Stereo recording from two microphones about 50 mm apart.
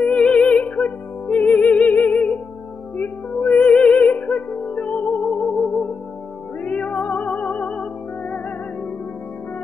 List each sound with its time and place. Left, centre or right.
0.0 s music: left
3.3 s music: left
5.2 s music: centre
6.6 s music: left